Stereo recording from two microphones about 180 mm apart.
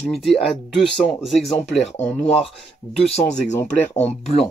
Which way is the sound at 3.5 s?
10° left (ahead or behind).